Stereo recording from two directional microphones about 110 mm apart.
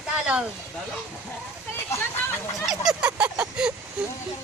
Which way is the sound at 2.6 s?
5° right (ahead or behind).